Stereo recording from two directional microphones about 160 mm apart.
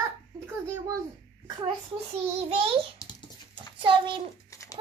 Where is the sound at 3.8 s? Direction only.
30° right (ahead or behind).